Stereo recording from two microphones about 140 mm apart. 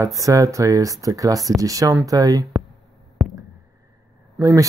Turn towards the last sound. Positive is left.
turn(degrees=-25)  # may be behind; listen again after turning